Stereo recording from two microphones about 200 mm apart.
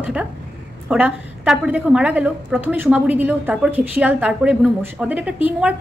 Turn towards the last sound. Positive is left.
turn(degrees=-5)  # may be behind; listen again after turning